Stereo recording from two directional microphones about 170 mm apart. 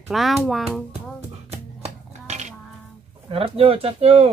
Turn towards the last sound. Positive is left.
turn(degrees=-35)  # may be behind; listen again after turning